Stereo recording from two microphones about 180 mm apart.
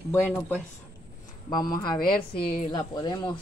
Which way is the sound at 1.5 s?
25° left (ahead or behind).